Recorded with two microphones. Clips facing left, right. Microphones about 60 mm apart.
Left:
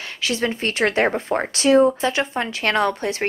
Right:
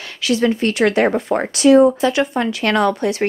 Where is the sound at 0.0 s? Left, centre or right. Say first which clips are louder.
Right 6 dB; left.